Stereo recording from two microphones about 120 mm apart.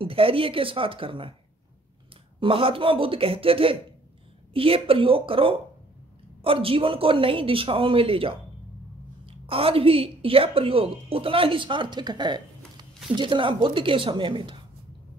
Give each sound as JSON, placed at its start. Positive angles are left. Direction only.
{"t": 0.0, "sound": "a woman's voice", "side_deg": -50}
{"t": 2.4, "sound": "a woman's voice", "side_deg": -50}